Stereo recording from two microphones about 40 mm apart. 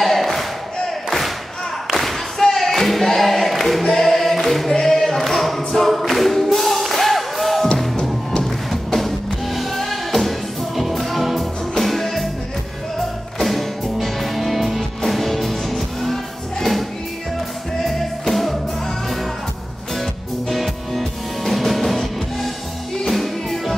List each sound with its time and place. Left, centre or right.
0.0 s a sound: centre
1.9 s a sound: centre
4.7 s choir: centre
5.7 s singing: centre
7.9 s music: centre
8.9 s music: centre
13.4 s music: centre
20.5 s music: centre